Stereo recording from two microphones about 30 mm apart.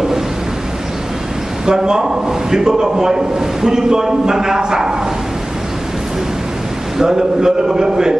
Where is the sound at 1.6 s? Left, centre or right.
Right.